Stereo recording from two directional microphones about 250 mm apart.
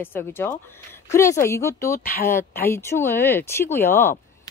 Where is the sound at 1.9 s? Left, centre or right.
Left.